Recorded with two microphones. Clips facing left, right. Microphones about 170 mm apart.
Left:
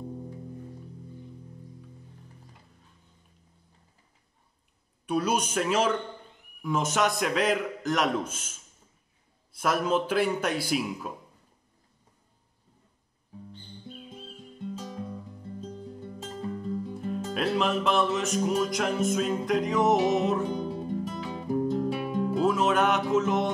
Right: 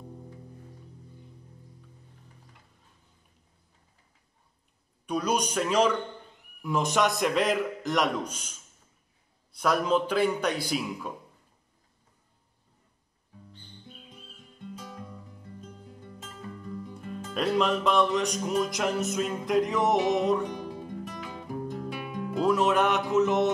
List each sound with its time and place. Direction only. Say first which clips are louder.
5.0 s music: left 1 dB; 5° left (ahead or behind)
9.6 s music: right 1 dB; 5° left (ahead or behind)
14.8 s music: left 6 dB; 25° left (ahead or behind)
17.3 s music: right 2 dB; centre (ahead or behind)
20.4 s music: left 5 dB; 30° left (ahead or behind)
22.4 s music: right 1 dB; centre (ahead or behind)